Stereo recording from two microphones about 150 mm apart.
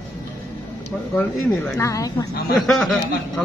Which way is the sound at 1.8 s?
20° left (ahead or behind).